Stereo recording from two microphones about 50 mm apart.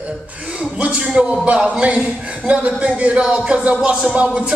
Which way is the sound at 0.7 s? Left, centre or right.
Right.